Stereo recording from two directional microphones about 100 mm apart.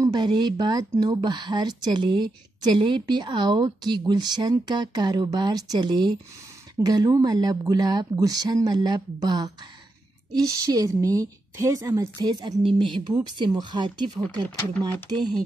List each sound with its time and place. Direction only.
0.0 s a woman's voice: 45° right (ahead or behind)
12.6 s speech: 55° right (ahead or behind)
13.4 s speech: 45° right (ahead or behind)